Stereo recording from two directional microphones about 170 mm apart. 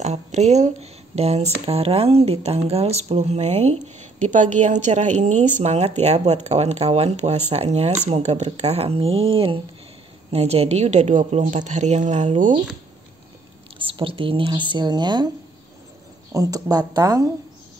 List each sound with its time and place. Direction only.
0.0 s a woman's voice: 40° right (ahead or behind)
13.7 s speech: 30° right (ahead or behind)